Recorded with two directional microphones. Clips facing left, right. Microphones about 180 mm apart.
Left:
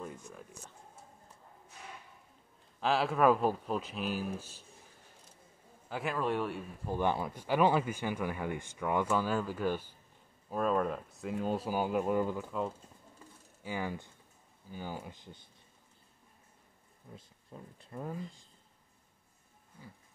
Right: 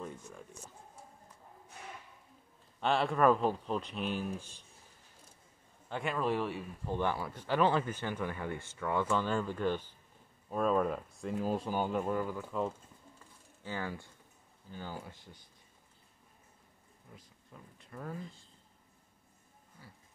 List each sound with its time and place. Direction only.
0.0 s a sound: 5° left (ahead or behind)
2.8 s speech: 5° left (ahead or behind)
5.9 s speech: 5° left (ahead or behind)
7.0 s speech: 20° left (ahead or behind)
13.6 s speech: 15° left (ahead or behind)
17.1 s speech: 30° left (ahead or behind)
19.8 s a sound: 15° left (ahead or behind)